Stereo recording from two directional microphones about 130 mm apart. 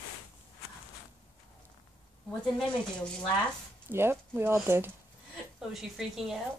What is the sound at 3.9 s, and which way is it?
Speech, 20° right (ahead or behind).